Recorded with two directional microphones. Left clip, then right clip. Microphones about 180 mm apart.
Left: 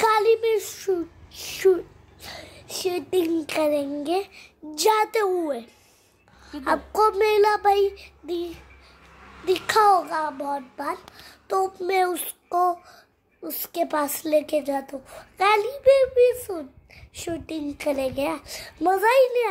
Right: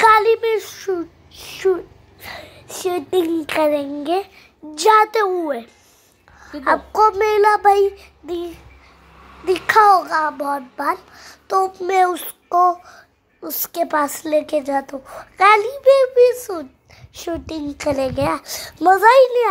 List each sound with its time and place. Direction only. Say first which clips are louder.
0.0 s a sound: right 7 dB; centre (ahead or behind); by 1.9 s 20° left (ahead or behind)
2.2 s a sound: right 5 dB; 5° left (ahead or behind)
2.8 s a child's voice: right 5 dB; 5° right (ahead or behind)
6.6 s a child's voice: right 6 dB; 15° left (ahead or behind)
7.5 s a woman's voice: right 6 dB; 10° right (ahead or behind)
9.8 s a child's voice: right 6 dB; 5° left (ahead or behind)
10.0 s child singing: right 7 dB; 10° right (ahead or behind)
11.1 s a child's voice: right 3 dB; 10° left (ahead or behind)
12.3 s child singing: right 7 dB; 5° left (ahead or behind)
13.4 s a child's voice: right 4 dB; 10° left (ahead or behind)